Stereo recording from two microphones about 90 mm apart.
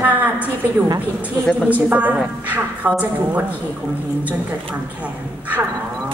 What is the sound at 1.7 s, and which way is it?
A woman's voice, 15° right (ahead or behind).